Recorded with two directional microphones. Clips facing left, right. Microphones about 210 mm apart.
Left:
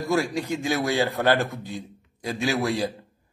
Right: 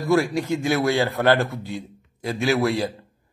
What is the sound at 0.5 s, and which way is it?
A man's voice, 15° left (ahead or behind).